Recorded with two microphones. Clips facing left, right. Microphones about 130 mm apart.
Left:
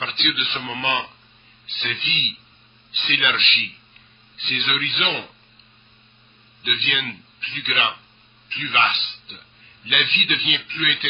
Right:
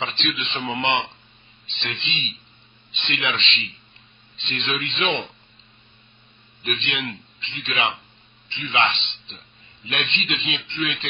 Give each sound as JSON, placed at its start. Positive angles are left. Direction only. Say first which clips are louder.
{"t": 0.0, "sound": "a man's voice", "louder": "even", "side_deg": -30}
{"t": 6.6, "sound": "a man's voice", "louder": "right 1 dB", "side_deg": -30}